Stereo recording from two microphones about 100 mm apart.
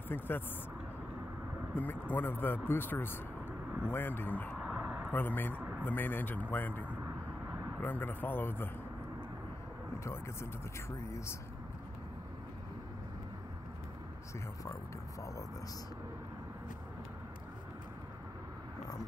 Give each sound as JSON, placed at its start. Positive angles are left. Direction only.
{"t": 0.1, "sound": "speech", "side_deg": 20}
{"t": 1.8, "sound": "speech", "side_deg": 20}
{"t": 4.6, "sound": "a sound", "side_deg": 0}
{"t": 5.1, "sound": "speech", "side_deg": 20}
{"t": 10.0, "sound": "speech", "side_deg": 30}